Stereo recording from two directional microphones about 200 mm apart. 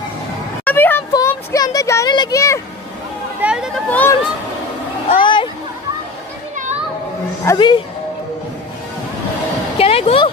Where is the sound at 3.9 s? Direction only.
10° left (ahead or behind).